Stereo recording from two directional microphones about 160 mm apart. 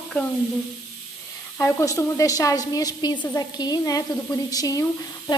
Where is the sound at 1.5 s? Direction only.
15° left (ahead or behind).